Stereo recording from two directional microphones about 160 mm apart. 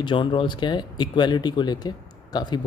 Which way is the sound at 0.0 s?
30° left (ahead or behind).